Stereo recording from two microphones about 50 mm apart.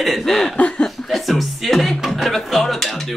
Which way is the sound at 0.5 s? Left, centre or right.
Left.